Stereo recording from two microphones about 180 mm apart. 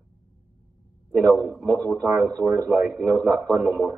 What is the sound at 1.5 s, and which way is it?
Speech, centre (ahead or behind).